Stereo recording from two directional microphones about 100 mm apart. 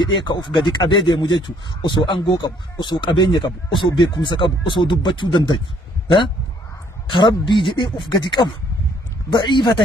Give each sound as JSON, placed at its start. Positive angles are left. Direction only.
{"t": 0.0, "sound": "speech", "side_deg": 50}
{"t": 7.1, "sound": "speech", "side_deg": 50}